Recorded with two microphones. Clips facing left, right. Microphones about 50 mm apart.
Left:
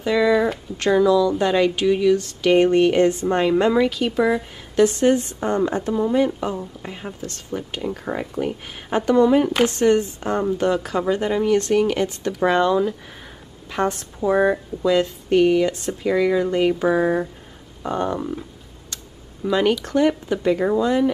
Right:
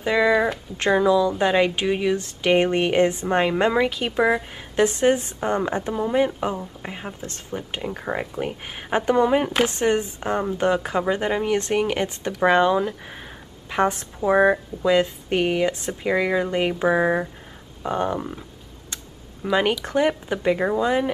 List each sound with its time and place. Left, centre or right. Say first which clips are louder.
0.0 s speech: left 1 dB; right
17.8 s a sound: left 1 dB; centre
19.4 s speech: left 2 dB; right